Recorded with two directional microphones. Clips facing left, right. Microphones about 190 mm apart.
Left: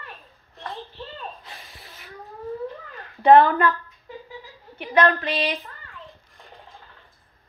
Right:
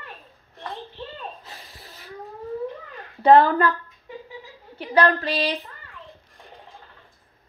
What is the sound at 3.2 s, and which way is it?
Speech, 35° right (ahead or behind).